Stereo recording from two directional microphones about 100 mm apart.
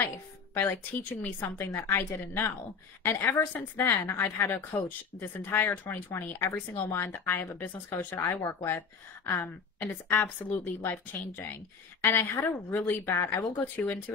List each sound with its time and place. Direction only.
1.2 s a woman's voice: 20° left (ahead or behind)